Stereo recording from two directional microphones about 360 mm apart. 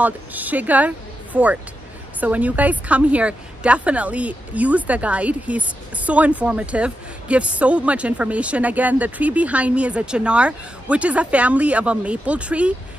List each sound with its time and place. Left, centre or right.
0.0 s a woman's voice: centre